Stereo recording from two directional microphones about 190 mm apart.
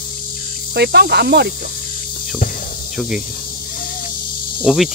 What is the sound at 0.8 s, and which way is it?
Insect, 60° right (ahead or behind).